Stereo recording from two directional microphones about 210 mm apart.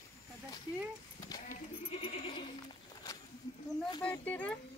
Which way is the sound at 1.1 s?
20° left (ahead or behind).